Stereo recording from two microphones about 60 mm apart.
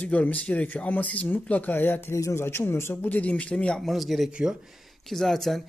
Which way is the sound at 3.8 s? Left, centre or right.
Centre.